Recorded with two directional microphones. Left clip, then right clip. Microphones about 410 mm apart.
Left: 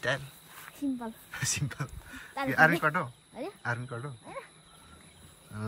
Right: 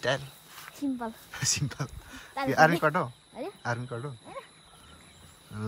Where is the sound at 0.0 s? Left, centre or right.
Centre.